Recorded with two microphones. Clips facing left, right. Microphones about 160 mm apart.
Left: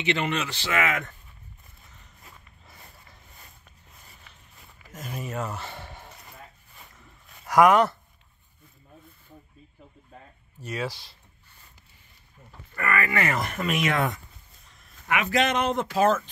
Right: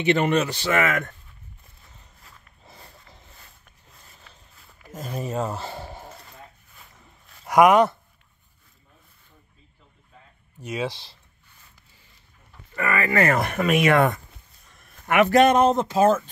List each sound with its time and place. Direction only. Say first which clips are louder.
0.0 s speech: right 7 dB; 45° right (ahead or behind)
2.6 s a sound: right 6 dB; 25° right (ahead or behind)
4.9 s speech: right 5 dB; 30° right (ahead or behind)
7.4 s speech: right 2 dB; 20° right (ahead or behind)
10.7 s speech: right 3 dB; 20° right (ahead or behind)
12.7 s speech: right 4 dB; 25° right (ahead or behind)
13.4 s speech: right 6 dB; 60° right (ahead or behind)
14.7 s a sound: right 3 dB; 55° right (ahead or behind)
15.3 s speech: right 7 dB; 45° right (ahead or behind)